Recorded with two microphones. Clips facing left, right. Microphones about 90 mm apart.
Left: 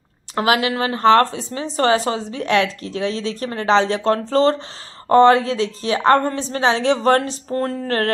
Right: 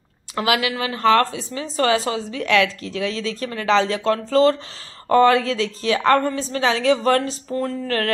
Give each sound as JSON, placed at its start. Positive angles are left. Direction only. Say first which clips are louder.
{"t": 0.4, "sound": "speech", "louder": "left 3 dB", "side_deg": 35}